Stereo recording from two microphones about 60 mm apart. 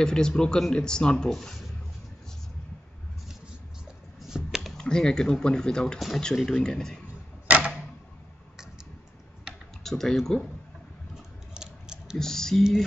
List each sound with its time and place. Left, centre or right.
0.0 s speech: centre
4.3 s computer keyboard: centre
4.6 s speech: centre
5.9 s speech: centre
7.4 s a sound: right
9.8 s speech: centre
11.5 s a sound: centre
12.2 s speech: centre